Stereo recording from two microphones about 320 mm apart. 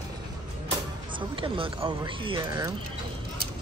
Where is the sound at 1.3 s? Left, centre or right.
Centre.